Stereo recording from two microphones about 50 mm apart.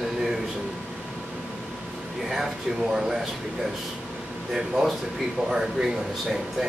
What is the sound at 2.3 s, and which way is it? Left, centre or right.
Speech, centre.